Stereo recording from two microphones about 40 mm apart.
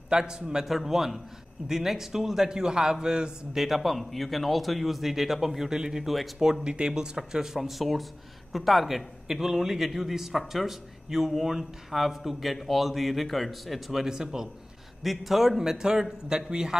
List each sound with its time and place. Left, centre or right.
0.1 s a man's voice: right
0.7 s a man's voice: centre
3.5 s a man's voice: centre
6.0 s speech: centre
6.6 s speech: right; by 14.0 s centre
14.0 s a man's voice: centre
15.0 s a man's voice: centre